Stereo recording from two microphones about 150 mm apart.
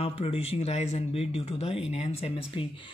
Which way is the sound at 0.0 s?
40° left (ahead or behind).